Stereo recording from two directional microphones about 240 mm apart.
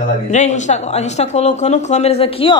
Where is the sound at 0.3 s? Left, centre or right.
Left.